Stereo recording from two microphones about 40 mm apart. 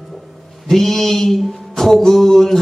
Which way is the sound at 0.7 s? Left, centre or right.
Centre.